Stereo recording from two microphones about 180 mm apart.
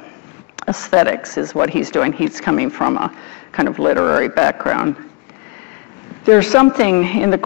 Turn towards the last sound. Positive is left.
turn(degrees=10)  # may be behind; listen again after turning